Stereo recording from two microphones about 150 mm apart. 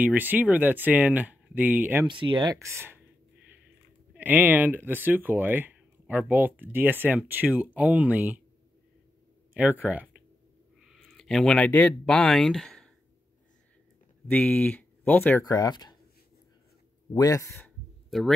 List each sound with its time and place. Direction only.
0.0 s speech: 10° right (ahead or behind)
2.0 s speech: 30° right (ahead or behind); by 3.0 s 15° right (ahead or behind)
4.1 s speech: 10° right (ahead or behind)
9.5 s speech: 10° right (ahead or behind)
14.3 s speech: 10° left (ahead or behind)
15.4 s speech: 25° left (ahead or behind)
17.1 s speech: 25° left (ahead or behind)
18.1 s speech: centre (ahead or behind)